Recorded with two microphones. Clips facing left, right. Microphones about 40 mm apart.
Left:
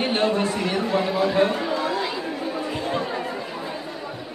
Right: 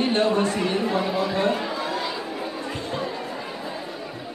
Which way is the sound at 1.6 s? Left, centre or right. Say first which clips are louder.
Left 3 dB; centre.